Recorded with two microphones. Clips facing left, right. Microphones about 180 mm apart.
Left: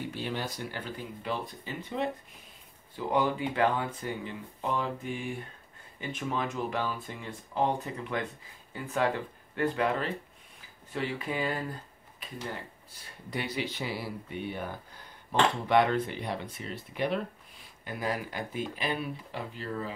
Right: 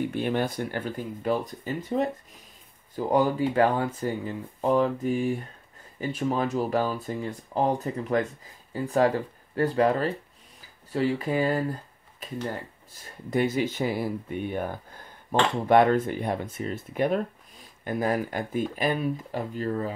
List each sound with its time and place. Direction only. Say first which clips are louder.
0.1 s speech: right 8 dB; 55° right (ahead or behind)